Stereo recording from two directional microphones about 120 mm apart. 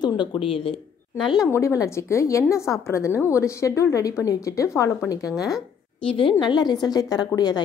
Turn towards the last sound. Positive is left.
turn(degrees=35)  # may be behind; listen again after turning